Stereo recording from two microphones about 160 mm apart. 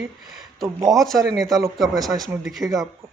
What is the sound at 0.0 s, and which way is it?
Speech, centre (ahead or behind).